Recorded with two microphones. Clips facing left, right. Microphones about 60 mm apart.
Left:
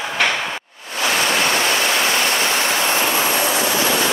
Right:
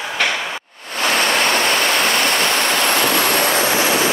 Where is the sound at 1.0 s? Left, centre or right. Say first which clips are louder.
Right 1 dB; right.